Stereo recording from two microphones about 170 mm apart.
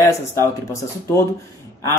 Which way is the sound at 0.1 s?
15° left (ahead or behind).